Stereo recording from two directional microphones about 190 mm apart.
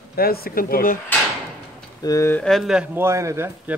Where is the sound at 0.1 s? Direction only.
55° left (ahead or behind).